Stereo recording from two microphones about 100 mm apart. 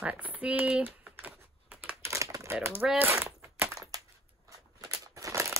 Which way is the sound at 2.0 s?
30° right (ahead or behind).